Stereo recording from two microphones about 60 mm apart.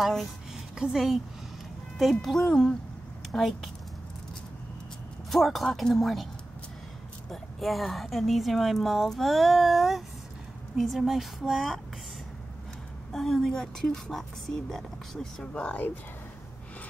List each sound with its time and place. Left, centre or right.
0.7 s a woman's voice: centre
5.3 s a woman's voice: centre
7.2 s a woman's voice: centre
13.1 s a woman's voice: centre